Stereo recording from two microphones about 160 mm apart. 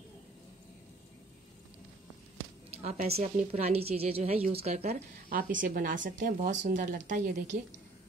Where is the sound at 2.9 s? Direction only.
75° right (ahead or behind).